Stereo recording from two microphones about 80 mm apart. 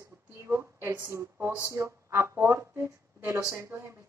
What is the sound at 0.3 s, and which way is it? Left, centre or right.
A man's voice, right.